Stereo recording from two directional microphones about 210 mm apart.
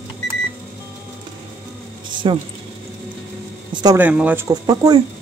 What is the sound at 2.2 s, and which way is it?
Speech, 25° right (ahead or behind).